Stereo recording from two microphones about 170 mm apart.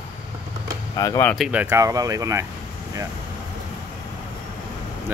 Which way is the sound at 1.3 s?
5° right (ahead or behind).